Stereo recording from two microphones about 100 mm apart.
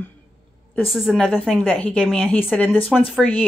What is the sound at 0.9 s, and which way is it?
Speech, centre (ahead or behind).